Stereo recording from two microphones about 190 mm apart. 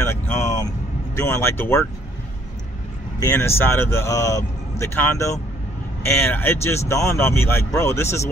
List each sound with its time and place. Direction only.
0.0 s vehicle: 15° left (ahead or behind)
1.1 s speech: 15° left (ahead or behind)
3.2 s speech: 15° left (ahead or behind)